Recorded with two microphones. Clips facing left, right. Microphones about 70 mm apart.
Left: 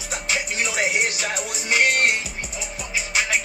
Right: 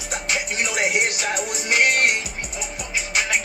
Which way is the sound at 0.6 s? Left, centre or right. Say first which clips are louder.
Right 1 dB; centre.